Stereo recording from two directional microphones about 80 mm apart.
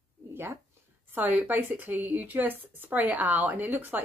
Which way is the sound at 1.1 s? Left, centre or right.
Right.